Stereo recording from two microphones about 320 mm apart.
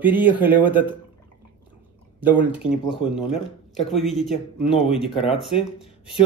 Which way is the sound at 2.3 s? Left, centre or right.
Centre.